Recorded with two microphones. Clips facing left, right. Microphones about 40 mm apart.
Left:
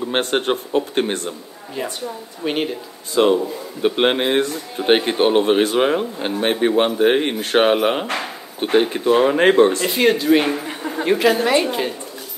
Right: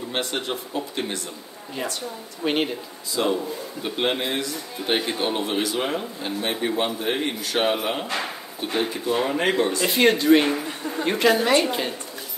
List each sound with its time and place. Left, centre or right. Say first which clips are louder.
0.1 s a man's voice: left 8 dB; left
1.8 s speech: left 4 dB; centre
3.2 s a man's voice: left 8 dB; left
9.8 s speech: left 2 dB; centre
10.4 s speech: left 2 dB; centre
11.1 s a woman's voice: left 3 dB; centre